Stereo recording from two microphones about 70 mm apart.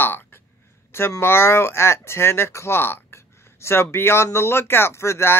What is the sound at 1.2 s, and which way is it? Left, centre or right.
Speech, left.